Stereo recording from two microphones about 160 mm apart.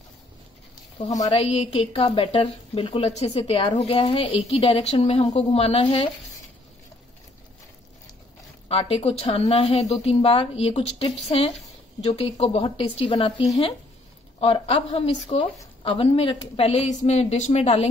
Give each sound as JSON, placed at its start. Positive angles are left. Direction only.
{"t": 1.2, "sound": "a woman's voice", "side_deg": 40}
{"t": 8.6, "sound": "a woman's voice", "side_deg": 40}